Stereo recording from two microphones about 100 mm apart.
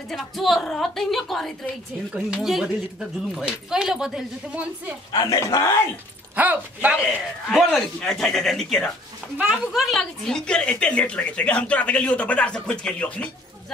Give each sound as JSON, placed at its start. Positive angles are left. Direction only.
{"t": 0.1, "sound": "a woman's voice", "side_deg": 0}
{"t": 5.1, "sound": "speech", "side_deg": 40}
{"t": 6.3, "sound": "speech", "side_deg": -15}
{"t": 7.4, "sound": "a woman's voice", "side_deg": 5}